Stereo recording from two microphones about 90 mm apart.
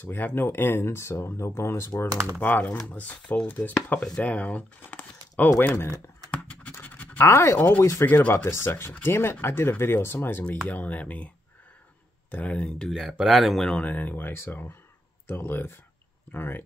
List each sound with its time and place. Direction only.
0.0 s speech: 20° left (ahead or behind)
2.4 s speech: 20° left (ahead or behind)
5.6 s speech: 30° left (ahead or behind)
6.7 s speech: 20° left (ahead or behind)
12.3 s speech: 15° left (ahead or behind)
13.1 s speech: 5° right (ahead or behind); by 16.6 s 20° left (ahead or behind)